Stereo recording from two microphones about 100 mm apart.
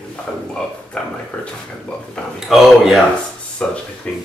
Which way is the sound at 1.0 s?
5° left (ahead or behind).